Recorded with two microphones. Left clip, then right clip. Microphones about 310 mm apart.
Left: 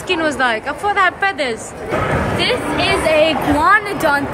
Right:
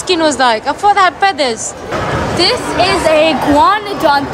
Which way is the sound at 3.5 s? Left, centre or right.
Centre.